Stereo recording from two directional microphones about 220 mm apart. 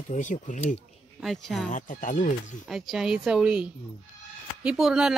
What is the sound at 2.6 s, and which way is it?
A woman's voice, centre (ahead or behind).